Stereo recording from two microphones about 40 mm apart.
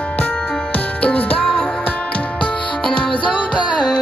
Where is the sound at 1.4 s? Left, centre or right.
Centre.